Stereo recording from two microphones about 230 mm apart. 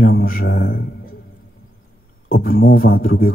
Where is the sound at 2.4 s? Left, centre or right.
Left.